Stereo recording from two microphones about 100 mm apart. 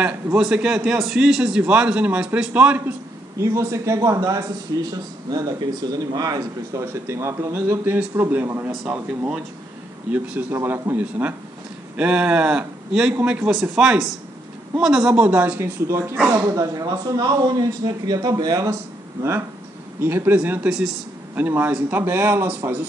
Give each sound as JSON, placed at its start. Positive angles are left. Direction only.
{"t": 0.4, "sound": "a man's voice", "side_deg": -5}
{"t": 3.3, "sound": "a man's voice", "side_deg": -30}
{"t": 13.5, "sound": "speech", "side_deg": -5}
{"t": 15.2, "sound": "speech", "side_deg": -20}
{"t": 20.0, "sound": "speech", "side_deg": -20}
{"t": 20.7, "sound": "speech", "side_deg": -5}
{"t": 21.4, "sound": "speech", "side_deg": -20}